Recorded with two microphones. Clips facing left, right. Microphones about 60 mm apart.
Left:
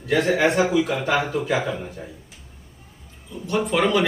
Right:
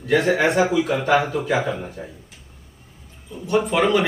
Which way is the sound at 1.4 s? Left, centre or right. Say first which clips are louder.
Right 1 dB; right.